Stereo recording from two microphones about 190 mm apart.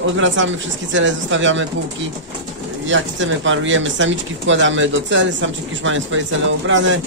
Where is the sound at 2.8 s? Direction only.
75° right (ahead or behind).